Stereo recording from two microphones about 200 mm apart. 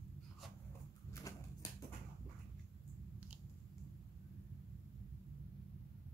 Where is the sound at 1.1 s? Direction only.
15° left (ahead or behind).